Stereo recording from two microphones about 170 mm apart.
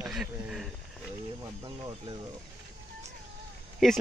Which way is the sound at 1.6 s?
30° right (ahead or behind).